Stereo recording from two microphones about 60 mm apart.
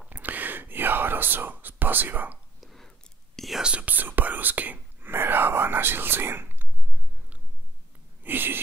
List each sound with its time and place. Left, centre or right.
0.1 s whispering: right
2.6 s whispering: centre
3.6 s whispering: right
8.2 s a sound: right